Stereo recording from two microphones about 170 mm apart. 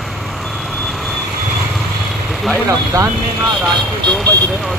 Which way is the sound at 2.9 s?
20° right (ahead or behind).